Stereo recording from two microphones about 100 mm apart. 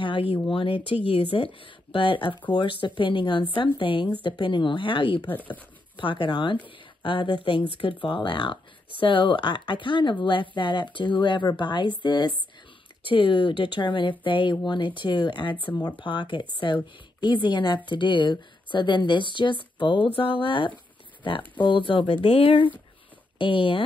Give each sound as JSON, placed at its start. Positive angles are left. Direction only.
{"t": 0.0, "sound": "a sound", "side_deg": 55}
{"t": 0.5, "sound": "speech", "side_deg": 65}
{"t": 5.3, "sound": "speech", "side_deg": 15}
{"t": 5.9, "sound": "speech", "side_deg": 55}